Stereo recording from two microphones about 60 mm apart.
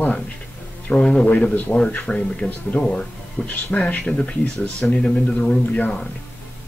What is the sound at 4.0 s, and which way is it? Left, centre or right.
Speech, centre.